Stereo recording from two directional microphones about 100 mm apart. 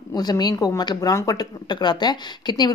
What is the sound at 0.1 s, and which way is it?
A woman's voice, 40° left (ahead or behind).